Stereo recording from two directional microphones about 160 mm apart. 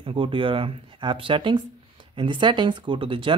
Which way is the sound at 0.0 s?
35° right (ahead or behind).